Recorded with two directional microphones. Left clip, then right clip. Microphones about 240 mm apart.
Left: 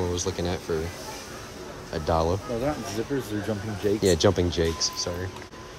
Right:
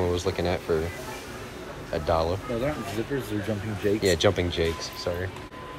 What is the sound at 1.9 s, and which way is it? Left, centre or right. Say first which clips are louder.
Speech: even; left.